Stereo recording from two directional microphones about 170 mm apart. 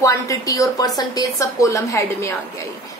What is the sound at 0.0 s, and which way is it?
A woman's voice, 20° left (ahead or behind).